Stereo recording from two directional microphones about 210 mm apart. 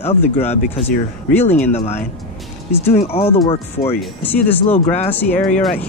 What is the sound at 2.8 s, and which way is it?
Speech, 30° left (ahead or behind).